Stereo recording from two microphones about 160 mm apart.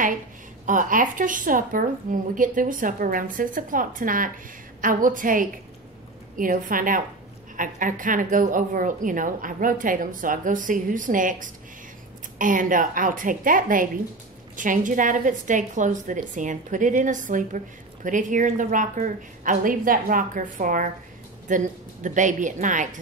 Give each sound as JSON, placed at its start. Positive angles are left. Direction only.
{"t": 0.7, "sound": "a woman's voice", "side_deg": -55}